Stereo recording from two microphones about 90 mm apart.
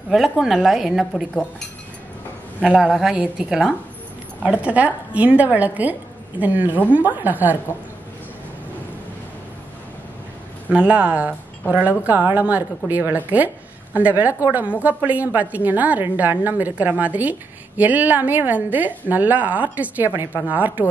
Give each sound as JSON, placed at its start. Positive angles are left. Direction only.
{"t": 0.1, "sound": "a woman's voice", "side_deg": -5}
{"t": 2.6, "sound": "a woman's voice", "side_deg": -10}
{"t": 10.7, "sound": "a woman's voice", "side_deg": -15}